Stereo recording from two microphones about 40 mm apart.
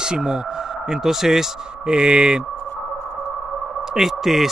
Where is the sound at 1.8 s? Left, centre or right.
Right.